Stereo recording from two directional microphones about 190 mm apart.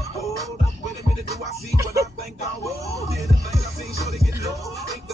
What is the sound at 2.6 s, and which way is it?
Speech, 15° right (ahead or behind).